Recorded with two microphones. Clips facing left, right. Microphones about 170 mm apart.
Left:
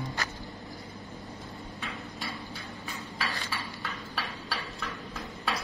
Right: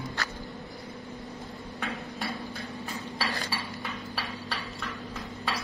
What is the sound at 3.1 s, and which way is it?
Chink, 35° right (ahead or behind).